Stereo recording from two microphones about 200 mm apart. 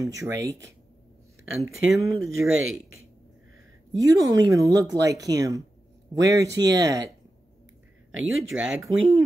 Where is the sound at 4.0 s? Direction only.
20° right (ahead or behind).